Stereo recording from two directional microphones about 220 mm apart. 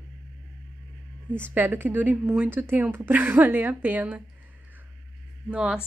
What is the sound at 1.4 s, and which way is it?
Speech, 10° right (ahead or behind).